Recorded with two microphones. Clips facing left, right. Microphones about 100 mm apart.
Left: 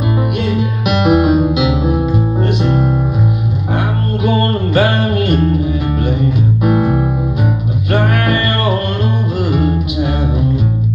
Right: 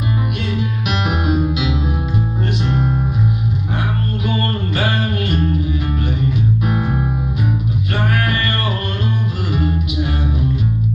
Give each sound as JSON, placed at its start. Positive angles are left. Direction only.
{"t": 0.8, "sound": "music", "side_deg": 65}
{"t": 1.3, "sound": "music", "side_deg": 15}
{"t": 1.7, "sound": "music", "side_deg": 65}
{"t": 4.3, "sound": "music", "side_deg": 40}
{"t": 4.9, "sound": "music", "side_deg": 60}
{"t": 6.6, "sound": "music", "side_deg": 60}
{"t": 8.0, "sound": "music", "side_deg": 20}